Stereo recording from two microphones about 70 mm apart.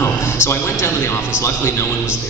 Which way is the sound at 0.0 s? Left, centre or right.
Left.